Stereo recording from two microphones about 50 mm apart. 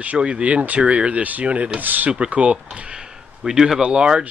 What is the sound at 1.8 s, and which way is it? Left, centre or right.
Speech, right.